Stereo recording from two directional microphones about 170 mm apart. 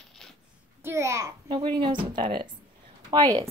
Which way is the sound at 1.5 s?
30° right (ahead or behind).